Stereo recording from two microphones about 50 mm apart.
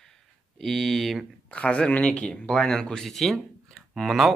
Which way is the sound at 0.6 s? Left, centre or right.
Centre.